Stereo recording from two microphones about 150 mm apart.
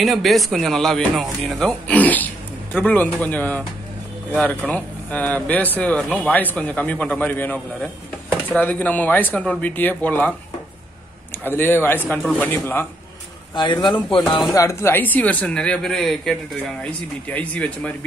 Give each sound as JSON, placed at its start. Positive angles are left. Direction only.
{"t": 0.0, "sound": "a man's voice", "side_deg": 0}
{"t": 11.3, "sound": "a man's voice", "side_deg": 15}
{"t": 13.6, "sound": "a man's voice", "side_deg": 30}
{"t": 14.5, "sound": "a man's voice", "side_deg": 20}